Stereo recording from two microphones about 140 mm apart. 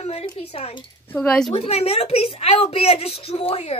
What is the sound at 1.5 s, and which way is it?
A woman's voice, 45° left (ahead or behind).